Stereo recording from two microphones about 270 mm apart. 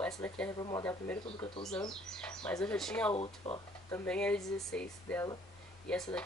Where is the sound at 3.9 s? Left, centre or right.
Centre.